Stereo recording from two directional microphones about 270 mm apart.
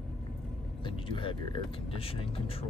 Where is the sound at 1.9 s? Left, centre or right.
Centre.